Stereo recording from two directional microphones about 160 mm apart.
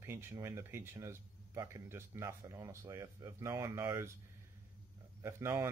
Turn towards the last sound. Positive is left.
turn(degrees=-15)  # may be behind; listen again after turning